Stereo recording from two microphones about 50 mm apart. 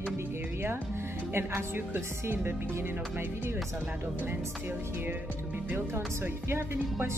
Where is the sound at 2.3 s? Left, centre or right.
Right.